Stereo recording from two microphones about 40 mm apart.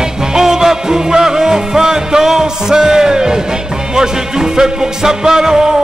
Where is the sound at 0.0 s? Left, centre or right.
Centre.